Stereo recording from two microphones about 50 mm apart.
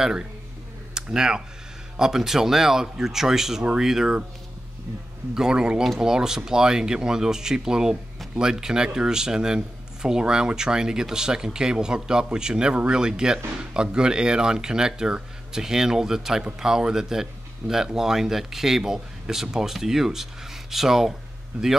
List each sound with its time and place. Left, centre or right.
0.0 s speech: centre
5.3 s speech: centre
21.5 s speech: right